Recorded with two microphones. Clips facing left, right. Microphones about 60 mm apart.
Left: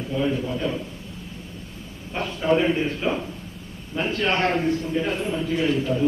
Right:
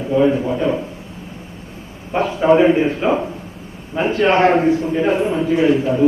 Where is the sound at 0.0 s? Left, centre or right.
Right.